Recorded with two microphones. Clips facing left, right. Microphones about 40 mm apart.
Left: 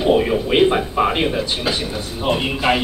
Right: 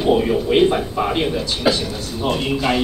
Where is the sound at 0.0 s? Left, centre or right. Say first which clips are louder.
Left 1 dB; centre.